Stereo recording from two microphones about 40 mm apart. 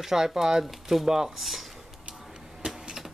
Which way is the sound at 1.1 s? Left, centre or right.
Centre.